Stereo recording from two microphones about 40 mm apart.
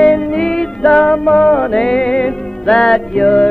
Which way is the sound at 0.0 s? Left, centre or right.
Centre.